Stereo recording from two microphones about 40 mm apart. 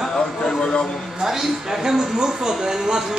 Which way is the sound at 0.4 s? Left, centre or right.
Centre.